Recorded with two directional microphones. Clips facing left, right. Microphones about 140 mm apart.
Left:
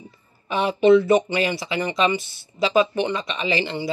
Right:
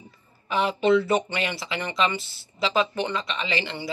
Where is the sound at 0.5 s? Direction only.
20° left (ahead or behind).